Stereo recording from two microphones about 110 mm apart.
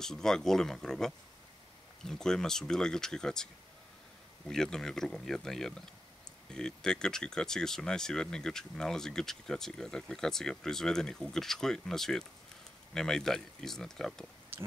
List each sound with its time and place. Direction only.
0.0 s speech: 5° left (ahead or behind)
4.5 s speech: 5° left (ahead or behind)
14.5 s a sound: 20° right (ahead or behind)